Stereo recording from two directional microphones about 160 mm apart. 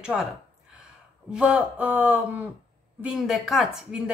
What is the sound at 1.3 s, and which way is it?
A woman's voice, 5° right (ahead or behind).